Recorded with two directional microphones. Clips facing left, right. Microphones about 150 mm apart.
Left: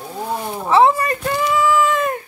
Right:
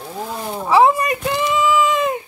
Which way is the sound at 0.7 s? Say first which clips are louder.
Even; 15° right (ahead or behind).